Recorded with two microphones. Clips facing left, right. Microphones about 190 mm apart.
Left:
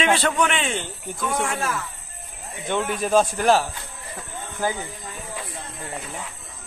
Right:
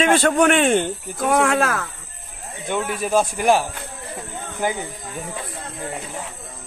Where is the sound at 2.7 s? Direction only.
5° right (ahead or behind).